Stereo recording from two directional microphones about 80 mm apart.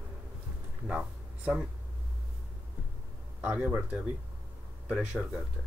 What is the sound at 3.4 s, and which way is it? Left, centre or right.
Speech, centre.